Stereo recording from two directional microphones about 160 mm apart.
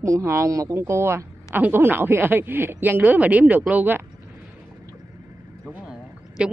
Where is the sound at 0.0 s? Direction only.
20° right (ahead or behind).